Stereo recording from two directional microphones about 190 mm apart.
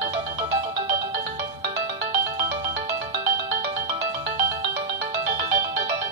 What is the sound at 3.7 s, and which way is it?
Music, 30° right (ahead or behind).